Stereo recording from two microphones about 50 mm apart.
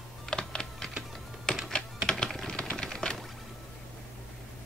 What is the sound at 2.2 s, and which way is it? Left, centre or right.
Typing, centre.